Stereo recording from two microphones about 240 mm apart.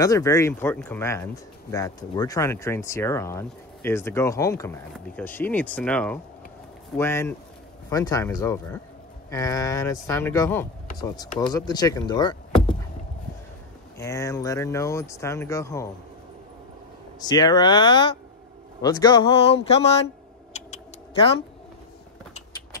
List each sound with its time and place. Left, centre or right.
0.0 s speech: centre
13.9 s speech: centre
17.2 s a man's voice: centre
20.5 s a sound: left